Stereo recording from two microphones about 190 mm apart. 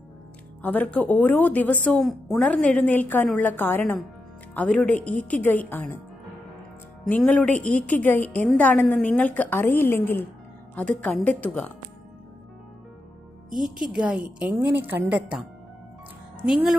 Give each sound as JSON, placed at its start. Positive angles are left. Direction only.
{"t": 0.6, "sound": "a woman's voice", "side_deg": 5}
{"t": 7.1, "sound": "a woman's voice", "side_deg": 5}
{"t": 13.6, "sound": "a woman's voice", "side_deg": -5}